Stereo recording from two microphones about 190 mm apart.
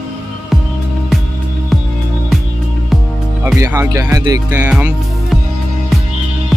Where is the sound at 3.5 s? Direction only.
15° right (ahead or behind).